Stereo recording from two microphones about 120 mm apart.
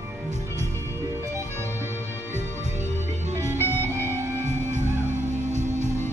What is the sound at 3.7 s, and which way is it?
Music, 20° right (ahead or behind).